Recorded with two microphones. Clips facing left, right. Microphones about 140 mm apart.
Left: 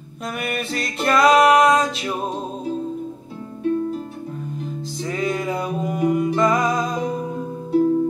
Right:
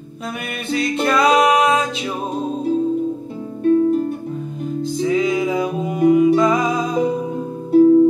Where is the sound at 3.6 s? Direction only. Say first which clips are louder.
Right 8 dB; 55° right (ahead or behind).